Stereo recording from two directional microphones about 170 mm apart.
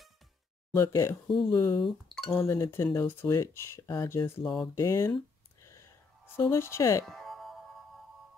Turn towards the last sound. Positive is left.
turn(degrees=0)  # may be behind; listen again after turning